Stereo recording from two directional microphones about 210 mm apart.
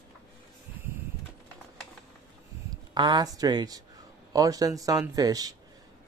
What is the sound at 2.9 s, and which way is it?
Speech, 20° right (ahead or behind).